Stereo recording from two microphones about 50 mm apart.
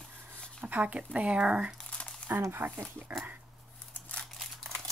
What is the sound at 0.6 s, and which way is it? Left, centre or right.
Speech, right.